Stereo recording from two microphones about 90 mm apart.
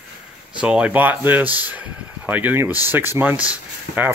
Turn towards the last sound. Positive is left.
turn(degrees=-15)  # may be behind; listen again after turning